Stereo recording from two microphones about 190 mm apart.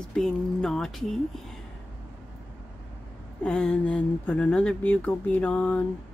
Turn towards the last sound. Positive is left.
turn(degrees=10)  # may be behind; listen again after turning